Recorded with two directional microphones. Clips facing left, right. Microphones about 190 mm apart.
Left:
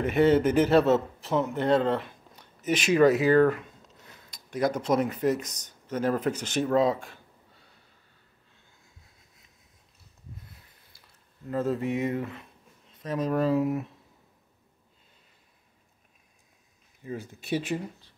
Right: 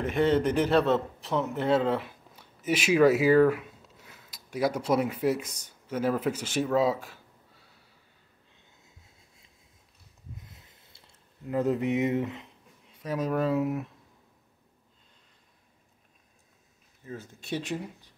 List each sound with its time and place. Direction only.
0.0 s a man's voice: 5° left (ahead or behind)
10.5 s a sound: 25° right (ahead or behind)
11.4 s speech: 15° right (ahead or behind); by 13.8 s centre (ahead or behind)
17.0 s speech: 15° left (ahead or behind)